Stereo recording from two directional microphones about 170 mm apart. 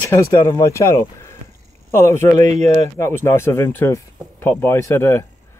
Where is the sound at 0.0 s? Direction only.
15° left (ahead or behind).